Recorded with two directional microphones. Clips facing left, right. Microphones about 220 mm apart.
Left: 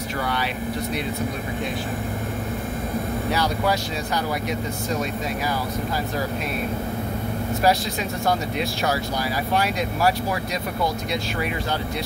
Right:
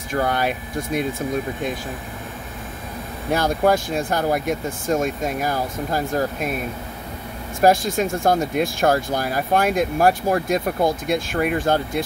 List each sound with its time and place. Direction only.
0.1 s speech: 50° right (ahead or behind)
3.3 s speech: 50° right (ahead or behind)
7.6 s speech: 50° right (ahead or behind)